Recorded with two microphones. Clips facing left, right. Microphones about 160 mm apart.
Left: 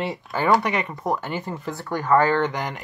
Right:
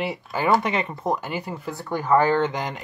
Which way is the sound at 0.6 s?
25° right (ahead or behind).